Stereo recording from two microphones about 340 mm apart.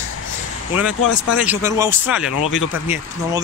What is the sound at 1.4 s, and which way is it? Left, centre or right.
Speech, centre.